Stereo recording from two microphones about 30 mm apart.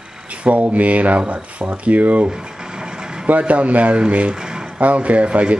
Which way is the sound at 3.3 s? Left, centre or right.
Right.